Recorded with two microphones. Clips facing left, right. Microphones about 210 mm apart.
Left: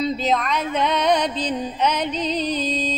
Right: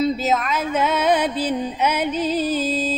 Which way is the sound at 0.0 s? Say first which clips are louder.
Right 2 dB; 5° right (ahead or behind).